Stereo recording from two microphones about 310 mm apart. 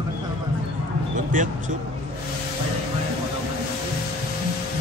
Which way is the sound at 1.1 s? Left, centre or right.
Right.